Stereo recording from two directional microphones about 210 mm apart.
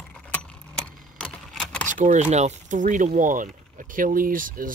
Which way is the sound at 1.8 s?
35° right (ahead or behind).